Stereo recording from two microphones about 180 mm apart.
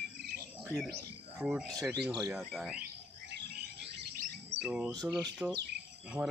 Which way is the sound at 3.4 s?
75° right (ahead or behind).